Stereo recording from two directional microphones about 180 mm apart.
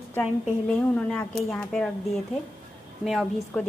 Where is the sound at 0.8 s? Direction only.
5° left (ahead or behind).